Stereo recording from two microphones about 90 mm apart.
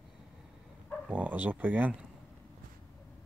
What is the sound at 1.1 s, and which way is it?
Speech, 20° right (ahead or behind).